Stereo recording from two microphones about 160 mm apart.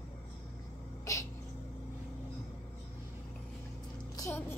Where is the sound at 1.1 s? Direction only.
20° left (ahead or behind).